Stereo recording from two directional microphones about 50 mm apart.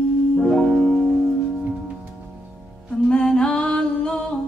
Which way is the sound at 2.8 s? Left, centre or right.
Centre.